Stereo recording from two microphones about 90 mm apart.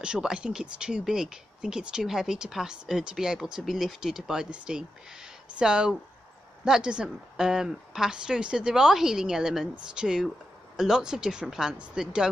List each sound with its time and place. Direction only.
0.0 s speech: 10° right (ahead or behind)